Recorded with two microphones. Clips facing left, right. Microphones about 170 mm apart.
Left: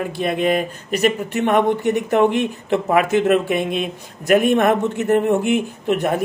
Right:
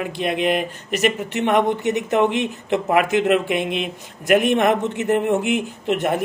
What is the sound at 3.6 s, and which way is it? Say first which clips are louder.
Speech: left 2 dB; 45° left (ahead or behind).